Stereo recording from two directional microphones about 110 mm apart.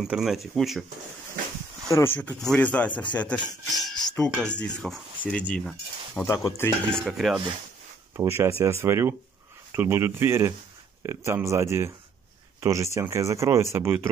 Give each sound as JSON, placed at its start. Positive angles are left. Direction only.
{"t": 0.0, "sound": "speech", "side_deg": -5}
{"t": 2.1, "sound": "speech", "side_deg": 10}
{"t": 2.9, "sound": "speech", "side_deg": 45}
{"t": 3.2, "sound": "speech", "side_deg": 10}
{"t": 3.6, "sound": "music", "side_deg": 0}
{"t": 4.4, "sound": "speech", "side_deg": 10}
{"t": 6.2, "sound": "speech", "side_deg": 25}
{"t": 6.9, "sound": "speech", "side_deg": 5}
{"t": 8.2, "sound": "speech", "side_deg": -25}